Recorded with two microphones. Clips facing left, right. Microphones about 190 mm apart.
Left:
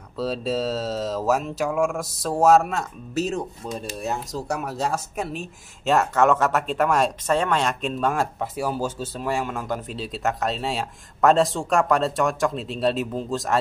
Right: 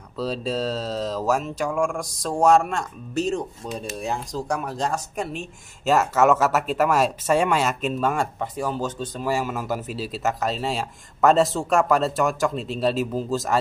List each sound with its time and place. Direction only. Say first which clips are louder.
0.2 s speech: left 1 dB; centre (ahead or behind)